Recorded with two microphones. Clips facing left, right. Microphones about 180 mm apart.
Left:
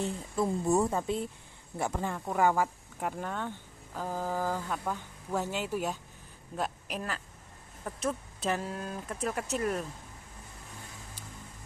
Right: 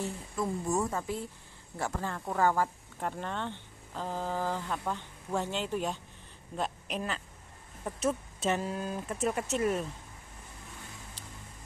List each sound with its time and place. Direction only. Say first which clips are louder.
0.0 s a woman's voice: left 3 dB; 20° left (ahead or behind); by 9.8 s 5° right (ahead or behind)